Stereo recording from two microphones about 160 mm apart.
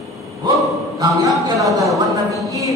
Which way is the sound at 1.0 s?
20° right (ahead or behind).